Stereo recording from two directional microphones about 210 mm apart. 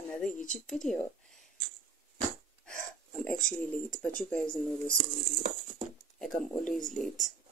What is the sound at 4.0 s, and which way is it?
Speech, 5° left (ahead or behind).